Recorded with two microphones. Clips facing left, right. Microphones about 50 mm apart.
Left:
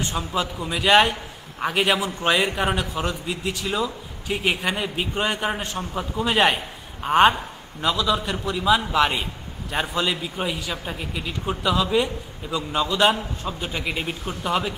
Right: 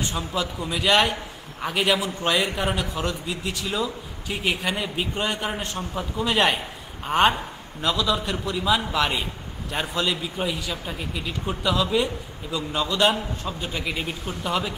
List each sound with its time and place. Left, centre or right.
0.1 s a man's voice: centre
1.8 s a man's voice: left; by 14.7 s centre